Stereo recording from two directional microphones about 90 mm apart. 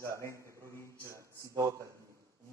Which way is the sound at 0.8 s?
35° right (ahead or behind).